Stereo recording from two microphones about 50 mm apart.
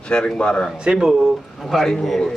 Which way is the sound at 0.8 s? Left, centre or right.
Centre.